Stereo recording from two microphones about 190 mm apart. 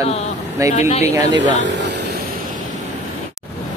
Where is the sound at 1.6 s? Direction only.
65° right (ahead or behind).